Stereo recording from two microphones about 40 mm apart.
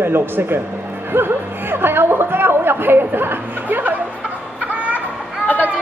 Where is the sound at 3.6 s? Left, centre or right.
Right.